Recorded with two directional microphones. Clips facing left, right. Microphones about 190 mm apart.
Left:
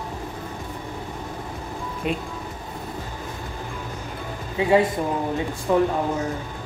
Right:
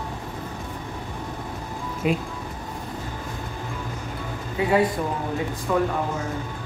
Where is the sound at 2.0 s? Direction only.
5° right (ahead or behind).